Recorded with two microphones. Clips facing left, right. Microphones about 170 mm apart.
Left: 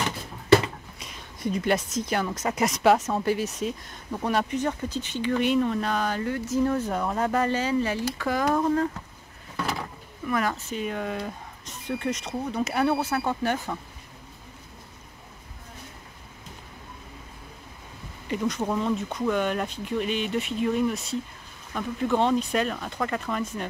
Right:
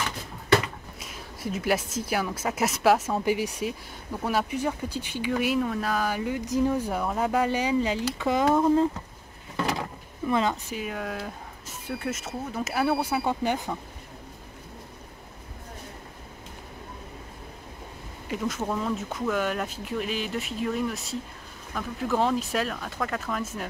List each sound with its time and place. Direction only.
0.9 s a woman's voice: 5° right (ahead or behind); by 8.8 s 25° right (ahead or behind)
10.2 s a woman's voice: 25° right (ahead or behind)
10.7 s speech: 5° right (ahead or behind)
18.3 s speech: centre (ahead or behind)